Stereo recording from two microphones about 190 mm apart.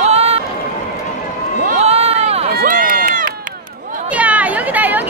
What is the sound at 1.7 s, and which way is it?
Run, 35° right (ahead or behind).